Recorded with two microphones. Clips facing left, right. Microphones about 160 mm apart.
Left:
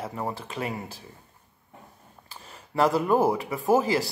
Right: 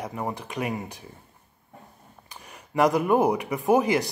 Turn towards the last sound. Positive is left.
turn(degrees=-20)  # may be behind; listen again after turning